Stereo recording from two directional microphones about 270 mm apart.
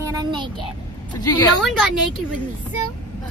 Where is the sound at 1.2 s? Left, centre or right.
Centre.